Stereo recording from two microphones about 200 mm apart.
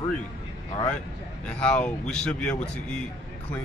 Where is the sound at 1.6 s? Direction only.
5° left (ahead or behind).